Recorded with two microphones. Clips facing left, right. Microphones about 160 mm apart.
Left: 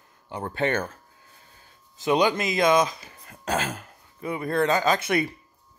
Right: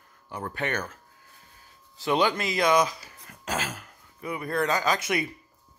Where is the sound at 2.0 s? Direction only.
20° left (ahead or behind).